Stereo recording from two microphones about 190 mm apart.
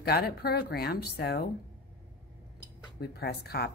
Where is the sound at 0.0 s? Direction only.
55° left (ahead or behind).